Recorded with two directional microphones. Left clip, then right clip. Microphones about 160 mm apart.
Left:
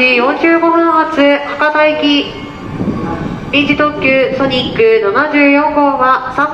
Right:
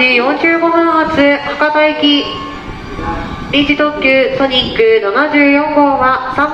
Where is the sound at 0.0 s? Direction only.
5° left (ahead or behind).